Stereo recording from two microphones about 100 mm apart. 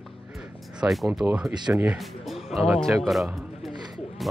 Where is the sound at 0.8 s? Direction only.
5° right (ahead or behind).